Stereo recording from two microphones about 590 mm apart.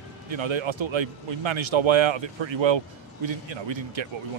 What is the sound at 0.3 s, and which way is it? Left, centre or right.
Speech, right.